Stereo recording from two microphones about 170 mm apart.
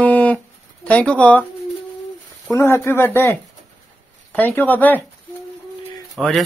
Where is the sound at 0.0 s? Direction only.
10° left (ahead or behind).